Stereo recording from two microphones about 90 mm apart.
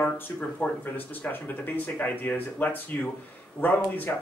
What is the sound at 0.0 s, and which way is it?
Speech, 15° left (ahead or behind).